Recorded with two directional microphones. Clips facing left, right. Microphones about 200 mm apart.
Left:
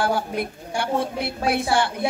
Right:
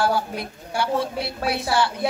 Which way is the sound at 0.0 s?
55° left (ahead or behind).